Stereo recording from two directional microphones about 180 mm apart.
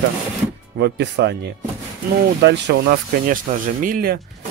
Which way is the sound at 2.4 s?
75° right (ahead or behind).